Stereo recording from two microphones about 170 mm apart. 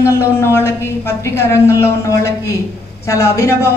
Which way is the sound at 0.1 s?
15° left (ahead or behind).